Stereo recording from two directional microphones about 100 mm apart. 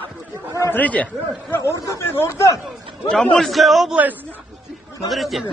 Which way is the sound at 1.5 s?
25° left (ahead or behind).